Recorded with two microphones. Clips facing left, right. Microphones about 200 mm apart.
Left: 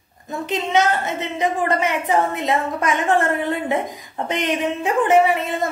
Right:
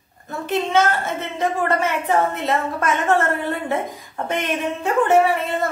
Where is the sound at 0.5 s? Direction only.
15° left (ahead or behind).